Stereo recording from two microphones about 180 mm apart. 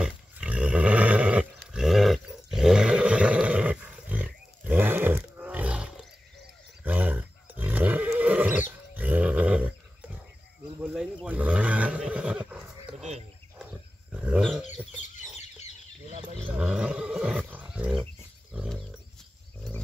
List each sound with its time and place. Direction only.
0.0 s dog: 5° right (ahead or behind)
1.7 s roar: centre (ahead or behind)
6.8 s neigh: 10° right (ahead or behind)
10.8 s cricket: 5° right (ahead or behind)
11.2 s neigh: 5° right (ahead or behind)
13.6 s a sound: 5° right (ahead or behind)
15.0 s chicken: 40° left (ahead or behind)
16.5 s wild animals: 5° right (ahead or behind)